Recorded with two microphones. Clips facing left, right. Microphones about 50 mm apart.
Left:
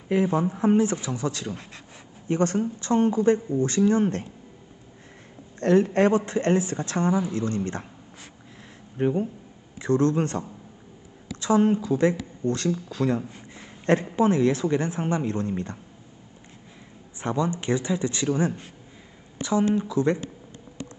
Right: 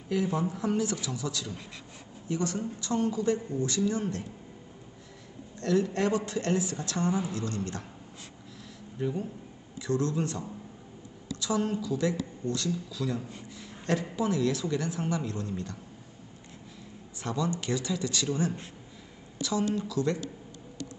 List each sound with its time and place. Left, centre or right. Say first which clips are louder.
0.1 s speech: left 6 dB; left
5.6 s speech: left 8 dB; left
8.9 s speech: left 8 dB; left
11.4 s speech: left 9 dB; left
13.3 s a sound: even; left
14.1 s speech: left 7 dB; left
17.2 s speech: left 5 dB; left